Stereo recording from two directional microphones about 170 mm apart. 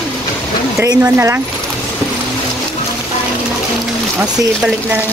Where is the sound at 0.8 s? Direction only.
15° right (ahead or behind).